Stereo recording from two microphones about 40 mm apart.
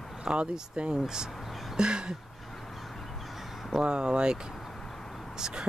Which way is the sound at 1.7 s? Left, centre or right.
Right.